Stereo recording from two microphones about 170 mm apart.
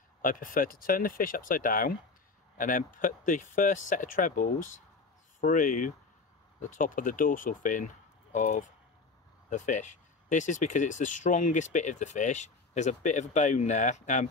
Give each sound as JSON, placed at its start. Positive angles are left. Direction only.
{"t": 0.2, "sound": "speech", "side_deg": 55}